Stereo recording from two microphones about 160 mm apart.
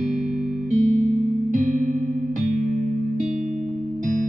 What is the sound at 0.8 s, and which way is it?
Music, 50° right (ahead or behind).